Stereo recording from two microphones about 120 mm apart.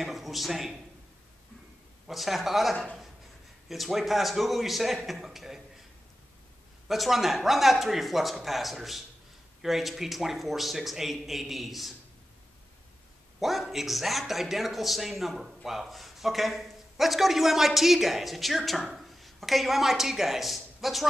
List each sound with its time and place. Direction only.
0.0 s a man's voice: centre (ahead or behind)
2.0 s a man's voice: centre (ahead or behind)
6.9 s a man's voice: centre (ahead or behind)
13.4 s a man's voice: centre (ahead or behind)